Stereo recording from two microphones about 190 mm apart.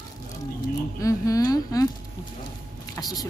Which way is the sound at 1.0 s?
20° left (ahead or behind).